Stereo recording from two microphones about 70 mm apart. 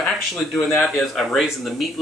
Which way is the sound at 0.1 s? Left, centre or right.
Centre.